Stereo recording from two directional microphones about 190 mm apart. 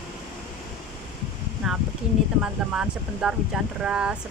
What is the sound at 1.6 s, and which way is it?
Speech, centre (ahead or behind).